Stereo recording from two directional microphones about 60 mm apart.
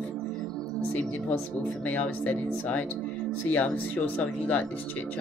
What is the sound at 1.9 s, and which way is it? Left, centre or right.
Speech, left.